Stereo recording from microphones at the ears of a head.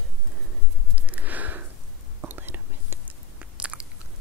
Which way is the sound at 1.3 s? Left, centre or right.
Right.